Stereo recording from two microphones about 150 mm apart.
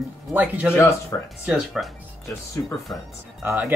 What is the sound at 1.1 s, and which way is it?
Speech, 15° left (ahead or behind).